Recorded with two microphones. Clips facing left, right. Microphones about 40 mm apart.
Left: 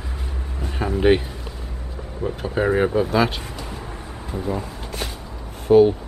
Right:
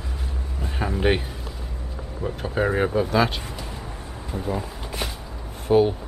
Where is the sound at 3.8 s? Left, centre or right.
Centre.